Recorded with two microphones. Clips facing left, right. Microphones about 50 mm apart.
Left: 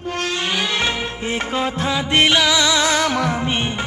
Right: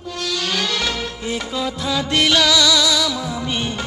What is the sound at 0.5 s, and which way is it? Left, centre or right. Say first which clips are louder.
Music: left 2 dB; left.